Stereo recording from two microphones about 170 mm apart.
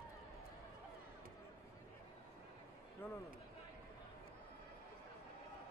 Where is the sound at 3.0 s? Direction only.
10° left (ahead or behind).